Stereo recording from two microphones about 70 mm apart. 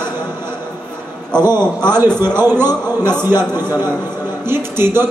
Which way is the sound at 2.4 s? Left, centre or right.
Right.